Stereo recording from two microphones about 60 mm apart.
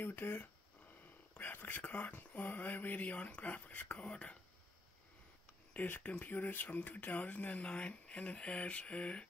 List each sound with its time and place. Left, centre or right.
0.0 s speech: left; by 4.4 s centre
5.7 s speech: left